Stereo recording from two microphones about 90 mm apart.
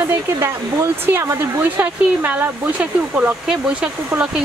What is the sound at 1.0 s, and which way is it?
Speech, 25° right (ahead or behind).